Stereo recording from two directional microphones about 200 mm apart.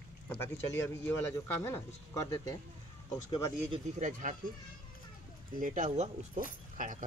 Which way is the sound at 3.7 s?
40° right (ahead or behind).